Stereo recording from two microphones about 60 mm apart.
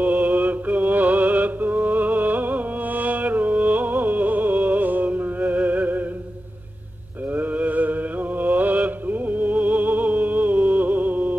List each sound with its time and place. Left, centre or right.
0.0 s music: right
7.3 s mantra: right